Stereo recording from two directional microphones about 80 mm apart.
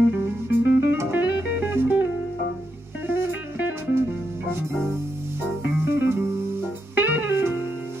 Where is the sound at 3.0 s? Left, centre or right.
Right.